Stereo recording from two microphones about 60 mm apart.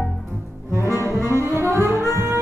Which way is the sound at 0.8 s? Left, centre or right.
Left.